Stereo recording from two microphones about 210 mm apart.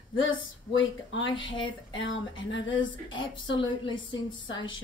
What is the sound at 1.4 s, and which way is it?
Speech, 20° left (ahead or behind).